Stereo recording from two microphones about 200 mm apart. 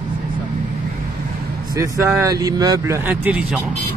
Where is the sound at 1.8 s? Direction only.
15° right (ahead or behind).